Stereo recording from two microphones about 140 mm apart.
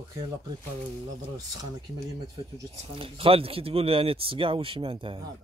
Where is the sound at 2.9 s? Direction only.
40° right (ahead or behind).